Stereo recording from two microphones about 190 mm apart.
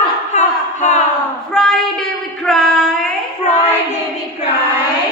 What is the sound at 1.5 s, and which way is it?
Child singing, centre (ahead or behind).